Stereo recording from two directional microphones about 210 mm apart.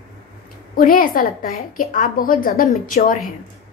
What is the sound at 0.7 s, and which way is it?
A woman's voice, 45° left (ahead or behind).